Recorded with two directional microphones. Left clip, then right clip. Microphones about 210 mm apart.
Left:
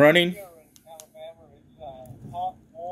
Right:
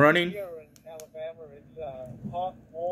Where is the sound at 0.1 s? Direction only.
5° left (ahead or behind).